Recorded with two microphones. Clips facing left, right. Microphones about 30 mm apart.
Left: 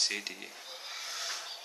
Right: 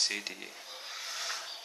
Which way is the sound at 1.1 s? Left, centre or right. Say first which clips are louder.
Right 1 dB; centre.